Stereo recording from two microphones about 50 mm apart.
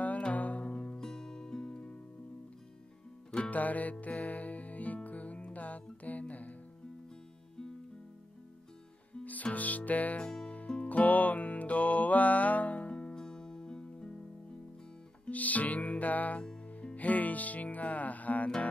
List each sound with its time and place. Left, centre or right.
0.0 s music: left
3.4 s music: left
9.2 s music: left
10.2 s music: centre
10.9 s music: left; by 14.1 s centre
15.2 s music: left